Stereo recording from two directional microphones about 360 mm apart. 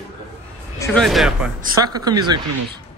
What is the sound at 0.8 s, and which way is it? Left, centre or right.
A man's voice, centre.